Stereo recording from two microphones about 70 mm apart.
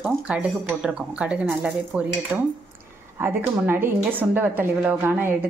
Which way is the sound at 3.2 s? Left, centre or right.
Right.